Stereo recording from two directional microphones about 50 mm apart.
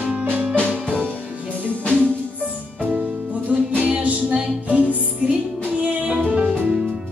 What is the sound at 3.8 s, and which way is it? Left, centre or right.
Music, right.